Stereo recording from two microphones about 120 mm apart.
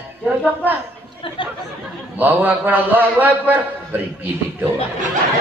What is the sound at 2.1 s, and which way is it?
A man's voice, 15° right (ahead or behind).